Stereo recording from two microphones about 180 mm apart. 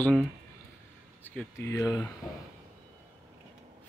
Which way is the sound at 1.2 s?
10° left (ahead or behind).